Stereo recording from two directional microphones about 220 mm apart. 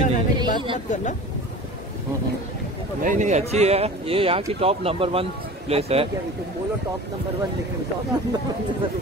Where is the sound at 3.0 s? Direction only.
35° right (ahead or behind).